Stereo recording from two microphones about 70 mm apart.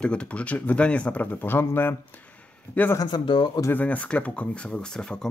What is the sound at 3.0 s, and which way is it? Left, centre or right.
Speech, left.